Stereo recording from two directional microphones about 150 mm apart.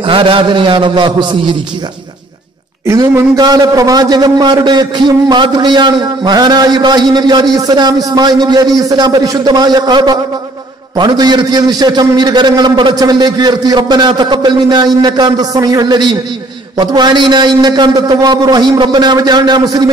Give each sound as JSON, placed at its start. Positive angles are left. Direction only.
{"t": 0.0, "sound": "a man's voice", "side_deg": -35}
{"t": 2.9, "sound": "a man's voice", "side_deg": -20}